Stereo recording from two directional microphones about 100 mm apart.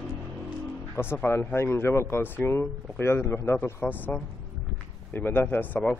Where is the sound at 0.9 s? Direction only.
20° left (ahead or behind).